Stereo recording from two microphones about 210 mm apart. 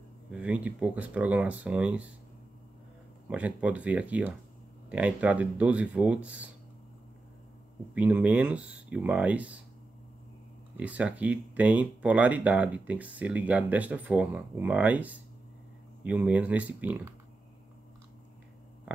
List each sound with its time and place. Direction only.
0.3 s speech: 5° right (ahead or behind)
3.3 s speech: 5° right (ahead or behind)
7.9 s speech: 5° right (ahead or behind)
10.8 s speech: 5° right (ahead or behind)